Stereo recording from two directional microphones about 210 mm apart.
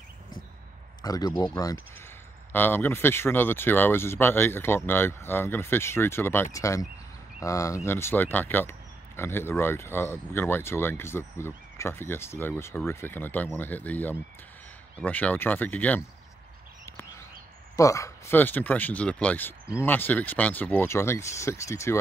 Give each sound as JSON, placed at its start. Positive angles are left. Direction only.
{"t": 1.0, "sound": "speech", "side_deg": 15}
{"t": 16.8, "sound": "a sound", "side_deg": 15}
{"t": 17.7, "sound": "speech", "side_deg": 15}